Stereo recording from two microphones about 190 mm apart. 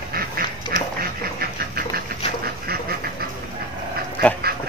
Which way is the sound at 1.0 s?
50° right (ahead or behind).